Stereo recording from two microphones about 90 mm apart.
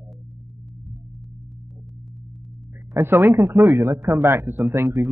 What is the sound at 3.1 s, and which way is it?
Speech, 30° right (ahead or behind).